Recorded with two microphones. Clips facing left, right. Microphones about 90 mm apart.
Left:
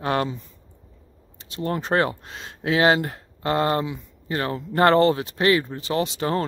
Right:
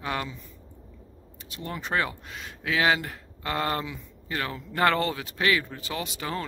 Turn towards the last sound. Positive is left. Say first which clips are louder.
# left 9 dB
turn(degrees=30)  # may be behind; listen again after turning